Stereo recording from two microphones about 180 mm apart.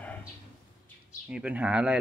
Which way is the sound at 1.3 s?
5° right (ahead or behind).